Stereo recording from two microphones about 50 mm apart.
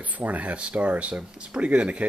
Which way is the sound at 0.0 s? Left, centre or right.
Right.